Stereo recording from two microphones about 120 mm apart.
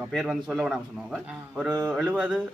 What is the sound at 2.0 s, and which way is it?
Mantra, 10° left (ahead or behind).